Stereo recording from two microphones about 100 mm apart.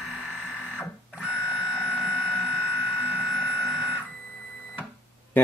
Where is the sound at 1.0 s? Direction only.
15° right (ahead or behind).